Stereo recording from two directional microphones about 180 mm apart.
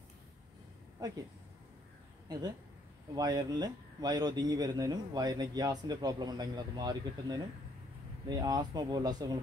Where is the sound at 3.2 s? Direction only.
20° right (ahead or behind).